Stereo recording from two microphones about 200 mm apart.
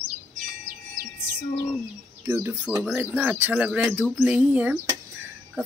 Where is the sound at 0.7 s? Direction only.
45° right (ahead or behind).